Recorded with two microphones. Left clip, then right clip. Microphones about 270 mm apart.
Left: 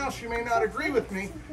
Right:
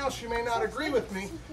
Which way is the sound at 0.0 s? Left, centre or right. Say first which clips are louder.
Even; centre.